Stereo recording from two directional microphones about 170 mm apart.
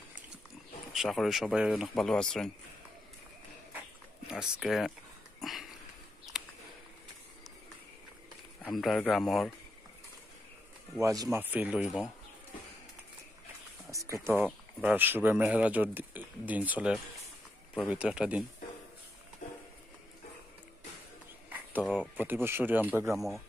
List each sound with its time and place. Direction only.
0.9 s speech: centre (ahead or behind)
4.3 s speech: 5° right (ahead or behind)
5.4 s dog: centre (ahead or behind)
6.3 s a sound: centre (ahead or behind)
8.7 s speech: centre (ahead or behind)
11.0 s speech: 20° right (ahead or behind)
13.8 s a sound: 20° right (ahead or behind)
14.4 s speech: 10° right (ahead or behind)
21.5 s a sound: 10° right (ahead or behind)
21.8 s a sound: 5° left (ahead or behind)
22.1 s speech: 10° right (ahead or behind)
23.1 s speech: centre (ahead or behind)